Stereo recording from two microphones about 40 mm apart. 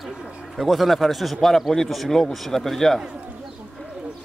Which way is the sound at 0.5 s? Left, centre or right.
Centre.